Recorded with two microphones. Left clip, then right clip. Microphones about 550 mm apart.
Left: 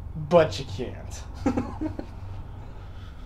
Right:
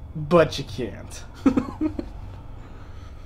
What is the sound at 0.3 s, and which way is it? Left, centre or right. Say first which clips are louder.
Speech: right 1 dB; right.